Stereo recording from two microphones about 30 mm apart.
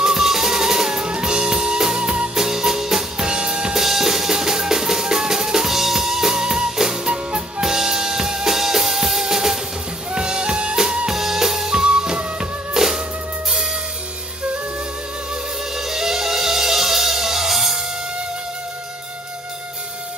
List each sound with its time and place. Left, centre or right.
0.0 s drum: centre
1.0 s music: right
3.7 s drum: centre
7.6 s drum kit: centre
8.5 s music: centre
10.1 s music: right
11.1 s drum kit: centre
11.8 s music: right
12.7 s music: centre
15.7 s music: centre